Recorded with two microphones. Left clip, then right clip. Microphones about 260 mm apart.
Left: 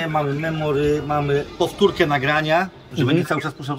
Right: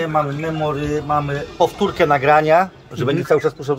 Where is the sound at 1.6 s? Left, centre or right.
Centre.